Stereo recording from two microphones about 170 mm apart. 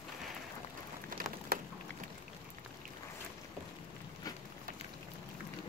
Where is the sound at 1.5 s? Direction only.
65° right (ahead or behind).